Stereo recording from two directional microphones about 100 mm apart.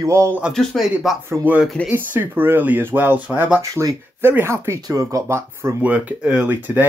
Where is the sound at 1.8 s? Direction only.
20° right (ahead or behind).